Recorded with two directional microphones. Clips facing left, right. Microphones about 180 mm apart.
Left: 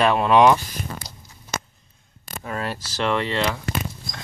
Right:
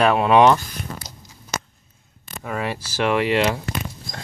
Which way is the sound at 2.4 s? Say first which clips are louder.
Right 2 dB; 10° right (ahead or behind).